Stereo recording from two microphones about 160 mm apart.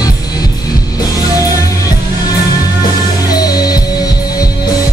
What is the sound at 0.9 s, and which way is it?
Music, 20° left (ahead or behind).